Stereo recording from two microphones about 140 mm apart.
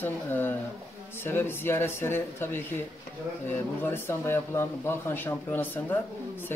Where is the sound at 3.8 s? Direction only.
15° left (ahead or behind).